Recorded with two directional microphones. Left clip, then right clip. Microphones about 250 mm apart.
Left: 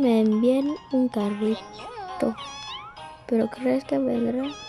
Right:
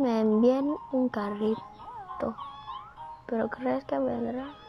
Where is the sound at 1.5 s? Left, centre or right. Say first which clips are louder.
Left 3 dB; left.